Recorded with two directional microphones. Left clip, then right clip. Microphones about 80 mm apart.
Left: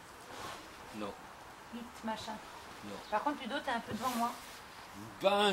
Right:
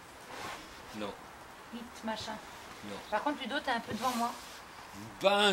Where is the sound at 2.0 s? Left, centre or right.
Right.